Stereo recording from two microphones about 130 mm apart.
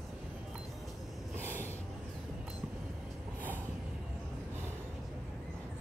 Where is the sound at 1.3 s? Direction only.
15° right (ahead or behind).